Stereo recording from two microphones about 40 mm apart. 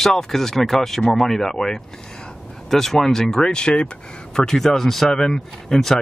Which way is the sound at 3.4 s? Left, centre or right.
Left.